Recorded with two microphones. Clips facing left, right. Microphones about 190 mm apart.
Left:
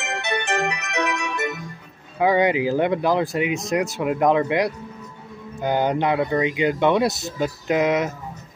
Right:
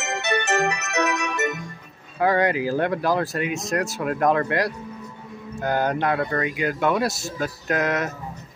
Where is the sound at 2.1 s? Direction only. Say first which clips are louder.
Left 2 dB; 15° left (ahead or behind).